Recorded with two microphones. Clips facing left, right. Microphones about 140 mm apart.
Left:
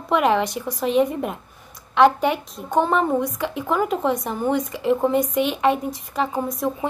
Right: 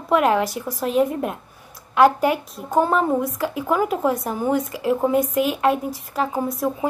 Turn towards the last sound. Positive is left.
turn(degrees=-5)  # may be behind; listen again after turning